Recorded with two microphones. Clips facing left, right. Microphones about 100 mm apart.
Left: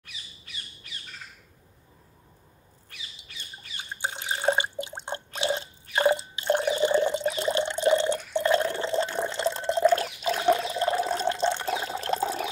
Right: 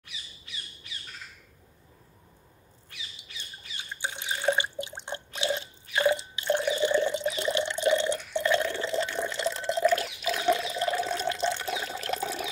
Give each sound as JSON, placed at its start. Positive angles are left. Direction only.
{"t": 3.9, "sound": "drip", "side_deg": 45}